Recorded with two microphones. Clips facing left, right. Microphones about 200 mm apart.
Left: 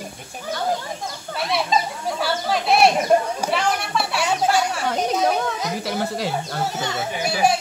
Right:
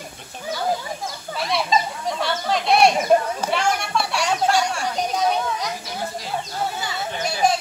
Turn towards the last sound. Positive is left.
turn(degrees=10)  # may be behind; listen again after turning